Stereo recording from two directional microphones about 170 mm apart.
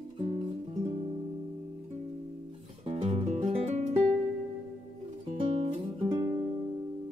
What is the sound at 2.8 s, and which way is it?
Music, 40° right (ahead or behind).